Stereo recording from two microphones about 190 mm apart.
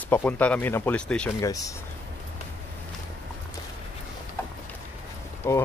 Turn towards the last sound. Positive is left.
turn(degrees=15)  # may be behind; listen again after turning